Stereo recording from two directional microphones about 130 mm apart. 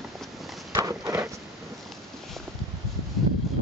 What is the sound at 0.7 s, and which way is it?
Clip-clop, 25° right (ahead or behind).